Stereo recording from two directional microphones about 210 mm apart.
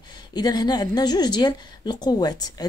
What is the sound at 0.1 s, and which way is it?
Speech, 20° left (ahead or behind).